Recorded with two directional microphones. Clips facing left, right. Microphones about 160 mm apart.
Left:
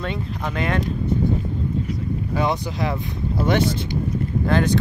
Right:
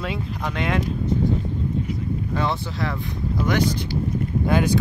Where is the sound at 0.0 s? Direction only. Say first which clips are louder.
Left 1 dB; centre (ahead or behind).